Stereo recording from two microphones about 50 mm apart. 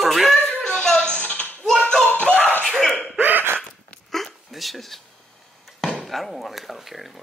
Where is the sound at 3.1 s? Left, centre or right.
Right.